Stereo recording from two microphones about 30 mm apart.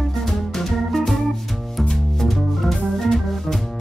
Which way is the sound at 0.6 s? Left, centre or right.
Centre.